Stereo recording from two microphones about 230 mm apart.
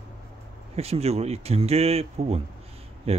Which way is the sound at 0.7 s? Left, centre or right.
Right.